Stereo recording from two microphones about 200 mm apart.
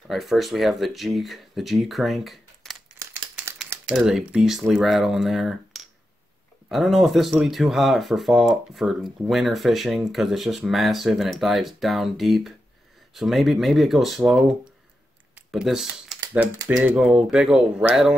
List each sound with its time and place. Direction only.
0.1 s speech: centre (ahead or behind)
6.7 s speech: centre (ahead or behind)
15.3 s computer keyboard: centre (ahead or behind)
16.6 s speech: 5° right (ahead or behind)